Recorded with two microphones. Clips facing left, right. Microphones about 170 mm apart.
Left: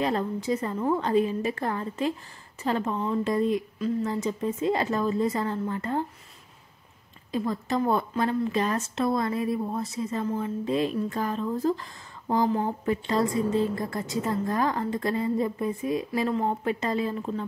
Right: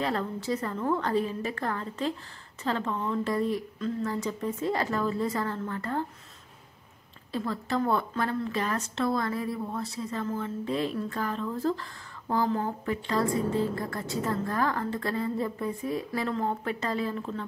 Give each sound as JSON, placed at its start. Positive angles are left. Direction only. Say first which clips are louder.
{"t": 0.0, "sound": "a woman's voice", "louder": "left 3 dB", "side_deg": 20}
{"t": 7.3, "sound": "a woman's voice", "louder": "left 3 dB", "side_deg": 15}